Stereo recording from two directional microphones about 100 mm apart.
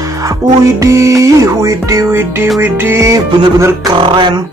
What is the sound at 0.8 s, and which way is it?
Music, 30° right (ahead or behind).